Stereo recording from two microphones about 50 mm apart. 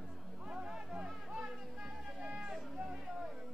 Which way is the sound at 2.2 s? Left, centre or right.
Centre.